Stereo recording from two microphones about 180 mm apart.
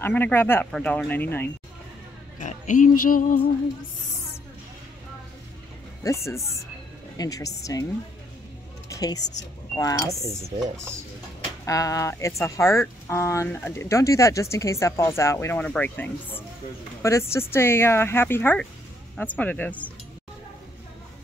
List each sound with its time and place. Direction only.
0.0 s speech: 10° left (ahead or behind)
2.3 s music: 45° left (ahead or behind)
6.0 s a woman's voice: 15° left (ahead or behind)
8.8 s a sound: 20° left (ahead or behind)
9.8 s a woman's voice: 20° left (ahead or behind)
10.1 s speech: 15° right (ahead or behind)
11.6 s speech: 20° left (ahead or behind)